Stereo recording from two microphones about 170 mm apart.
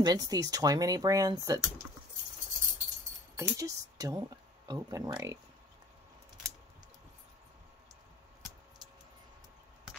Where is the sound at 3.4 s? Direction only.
20° right (ahead or behind).